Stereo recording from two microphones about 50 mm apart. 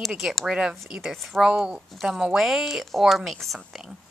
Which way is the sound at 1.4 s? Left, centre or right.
Centre.